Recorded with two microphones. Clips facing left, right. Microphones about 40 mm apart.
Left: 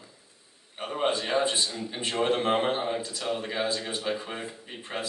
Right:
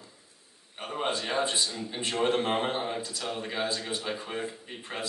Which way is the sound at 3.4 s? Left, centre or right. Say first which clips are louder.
Left 2 dB; centre.